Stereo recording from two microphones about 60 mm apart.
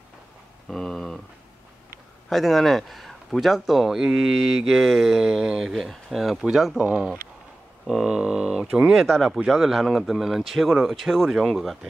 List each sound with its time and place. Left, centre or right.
0.7 s a sound: centre
2.2 s speech: centre
6.8 s speech: centre
7.8 s speech: centre